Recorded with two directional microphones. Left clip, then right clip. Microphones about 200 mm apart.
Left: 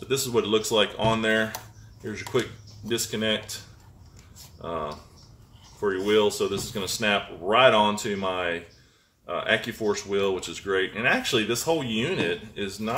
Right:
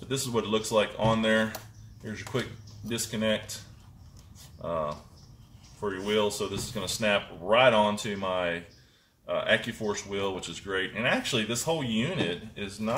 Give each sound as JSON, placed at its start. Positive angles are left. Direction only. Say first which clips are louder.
{"t": 0.1, "sound": "speech", "louder": "left 5 dB", "side_deg": 30}
{"t": 5.9, "sound": "speech", "louder": "left 6 dB", "side_deg": 30}